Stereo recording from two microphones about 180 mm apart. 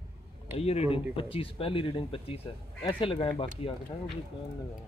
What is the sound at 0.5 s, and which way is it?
Speech, 35° left (ahead or behind).